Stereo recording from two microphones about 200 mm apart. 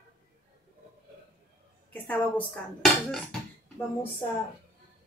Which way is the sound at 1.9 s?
5° left (ahead or behind).